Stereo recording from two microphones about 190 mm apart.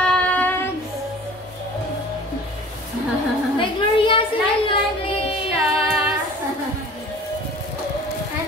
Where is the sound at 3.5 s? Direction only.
25° left (ahead or behind).